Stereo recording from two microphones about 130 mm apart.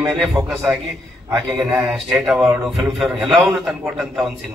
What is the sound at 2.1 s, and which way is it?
A man's voice, 5° right (ahead or behind).